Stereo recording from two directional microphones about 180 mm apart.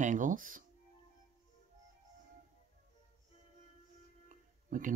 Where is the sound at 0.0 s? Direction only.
45° right (ahead or behind).